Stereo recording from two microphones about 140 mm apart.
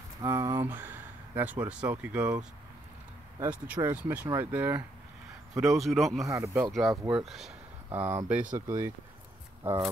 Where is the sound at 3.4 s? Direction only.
10° right (ahead or behind).